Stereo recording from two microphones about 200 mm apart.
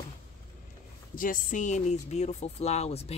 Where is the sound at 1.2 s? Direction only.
40° left (ahead or behind).